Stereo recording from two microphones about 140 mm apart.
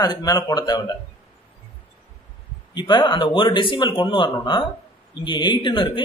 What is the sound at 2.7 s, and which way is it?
Speech, 35° left (ahead or behind).